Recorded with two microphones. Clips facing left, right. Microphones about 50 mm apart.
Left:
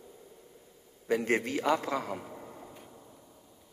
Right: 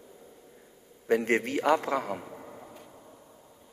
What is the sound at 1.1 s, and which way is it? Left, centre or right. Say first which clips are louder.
A man's voice: right 3 dB; right.